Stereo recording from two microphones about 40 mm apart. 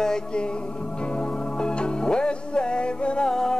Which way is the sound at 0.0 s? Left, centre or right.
Centre.